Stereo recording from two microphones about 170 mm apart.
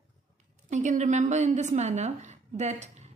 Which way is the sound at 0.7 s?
45° right (ahead or behind).